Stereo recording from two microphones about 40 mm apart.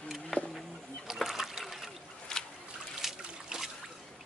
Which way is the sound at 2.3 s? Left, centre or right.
Centre.